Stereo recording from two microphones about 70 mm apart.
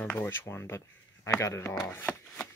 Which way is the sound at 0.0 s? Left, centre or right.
Left.